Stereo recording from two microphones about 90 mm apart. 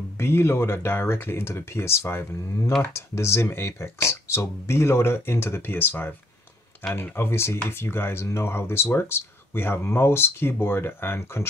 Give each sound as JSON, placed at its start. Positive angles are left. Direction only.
{"t": 0.2, "sound": "speech", "side_deg": 25}